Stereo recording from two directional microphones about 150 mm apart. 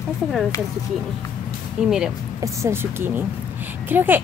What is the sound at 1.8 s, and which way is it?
Speech, 5° right (ahead or behind).